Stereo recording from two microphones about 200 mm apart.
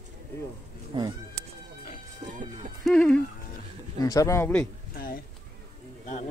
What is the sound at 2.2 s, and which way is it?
Speech, 40° right (ahead or behind).